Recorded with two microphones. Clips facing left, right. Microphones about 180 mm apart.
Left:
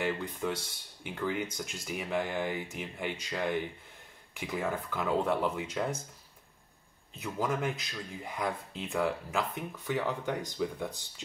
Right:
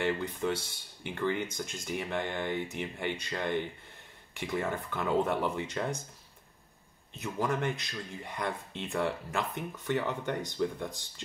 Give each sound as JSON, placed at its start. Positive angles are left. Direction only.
{"t": 0.0, "sound": "speech", "side_deg": 0}
{"t": 7.2, "sound": "speech", "side_deg": 5}